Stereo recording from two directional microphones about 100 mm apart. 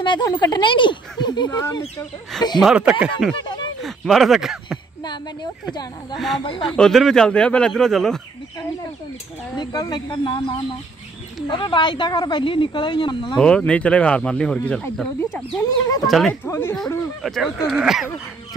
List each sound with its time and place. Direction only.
0.0 s speech: 50° left (ahead or behind)
2.6 s speech: 10° right (ahead or behind)
3.4 s a sound: 50° left (ahead or behind)
3.8 s speech: centre (ahead or behind)
5.0 s speech: 50° left (ahead or behind)
6.1 s speech: centre (ahead or behind)
9.6 s speech: 40° left (ahead or behind)
11.4 s speech: 50° left (ahead or behind)
13.4 s speech: 10° left (ahead or behind)
15.5 s speech: 40° left (ahead or behind)
16.1 s speech: centre (ahead or behind)
16.4 s speech: 25° left (ahead or behind)
17.2 s speech: centre (ahead or behind)